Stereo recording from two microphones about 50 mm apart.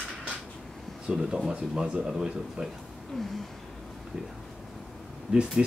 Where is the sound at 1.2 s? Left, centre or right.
Centre.